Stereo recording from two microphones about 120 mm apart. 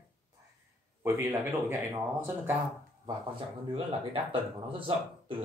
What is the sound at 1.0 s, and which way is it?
Speech, 25° right (ahead or behind).